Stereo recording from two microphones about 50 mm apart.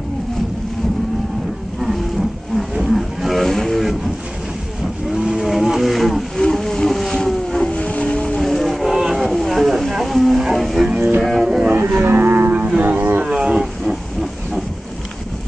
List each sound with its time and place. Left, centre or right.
1.8 s roaring cats: centre
5.1 s vehicle: centre
6.4 s boat: centre
7.7 s vehicle: left
8.4 s wild animals: centre
11.2 s music: centre
11.7 s livestock: right
12.5 s a sound: right
12.8 s a sound: right
13.2 s roaring cats: centre